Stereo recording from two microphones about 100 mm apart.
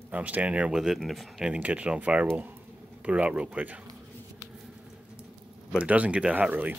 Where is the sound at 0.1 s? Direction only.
15° right (ahead or behind); by 1.5 s centre (ahead or behind).